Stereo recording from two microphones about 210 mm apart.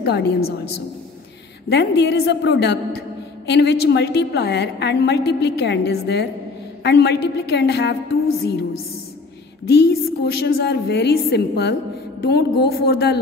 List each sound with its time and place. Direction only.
0.0 s a woman's voice: 50° left (ahead or behind)
1.7 s a woman's voice: 55° left (ahead or behind)
9.7 s a woman's voice: 50° left (ahead or behind)